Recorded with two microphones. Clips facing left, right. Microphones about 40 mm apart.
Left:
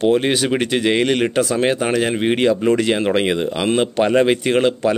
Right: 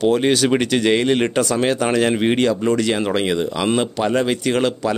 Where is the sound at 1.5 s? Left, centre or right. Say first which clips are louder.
Even; left.